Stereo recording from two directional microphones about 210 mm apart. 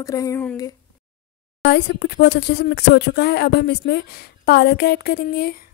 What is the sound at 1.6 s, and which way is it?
Speech, 50° left (ahead or behind).